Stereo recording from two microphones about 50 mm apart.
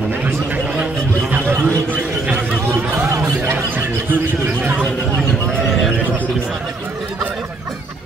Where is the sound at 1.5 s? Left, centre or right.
Right.